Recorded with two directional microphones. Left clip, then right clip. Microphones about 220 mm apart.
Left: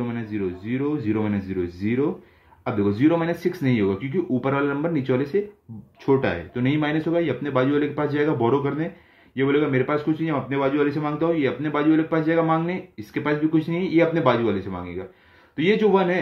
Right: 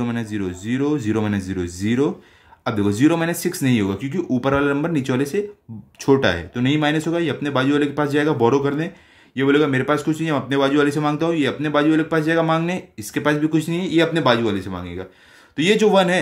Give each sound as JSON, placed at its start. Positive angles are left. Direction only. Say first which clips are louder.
{"t": 0.0, "sound": "speech", "louder": "right 2 dB", "side_deg": -30}
{"t": 6.5, "sound": "speech", "louder": "right 4 dB", "side_deg": -20}